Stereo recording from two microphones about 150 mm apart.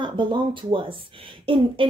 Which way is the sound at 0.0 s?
30° right (ahead or behind).